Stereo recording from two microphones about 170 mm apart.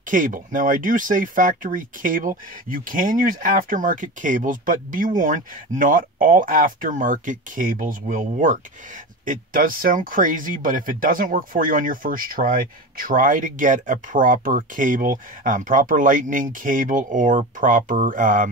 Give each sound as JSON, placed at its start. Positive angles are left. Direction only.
{"t": 0.0, "sound": "speech", "side_deg": -50}